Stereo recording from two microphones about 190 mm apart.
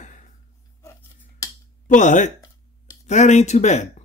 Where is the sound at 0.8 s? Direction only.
15° left (ahead or behind).